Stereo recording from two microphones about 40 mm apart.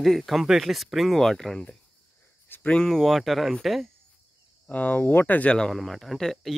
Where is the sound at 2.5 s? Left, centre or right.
Left.